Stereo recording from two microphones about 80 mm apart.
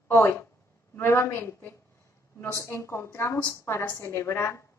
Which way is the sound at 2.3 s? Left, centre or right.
Left.